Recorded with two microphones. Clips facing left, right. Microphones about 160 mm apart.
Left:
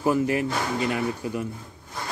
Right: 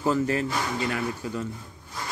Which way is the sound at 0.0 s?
15° left (ahead or behind).